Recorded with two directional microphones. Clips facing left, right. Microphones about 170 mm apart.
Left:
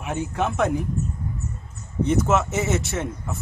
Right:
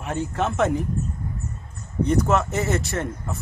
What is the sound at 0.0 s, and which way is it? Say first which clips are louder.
Speech: even; 5° left (ahead or behind).